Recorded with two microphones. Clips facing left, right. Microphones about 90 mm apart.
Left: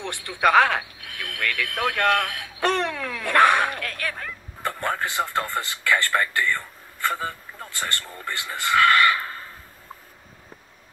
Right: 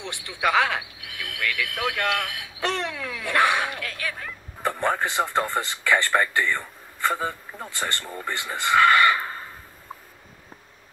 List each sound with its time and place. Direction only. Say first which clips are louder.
0.4 s speech: left 4 dB; 55° left (ahead or behind)
1.0 s speech: left 1 dB; 15° right (ahead or behind)
2.6 s speech: left 4 dB; 55° left (ahead or behind)
3.0 s dog: left 2 dB; 15° right (ahead or behind)
3.3 s speech: left 4 dB; 60° left (ahead or behind)
3.7 s speech: left 1 dB; 15° right (ahead or behind)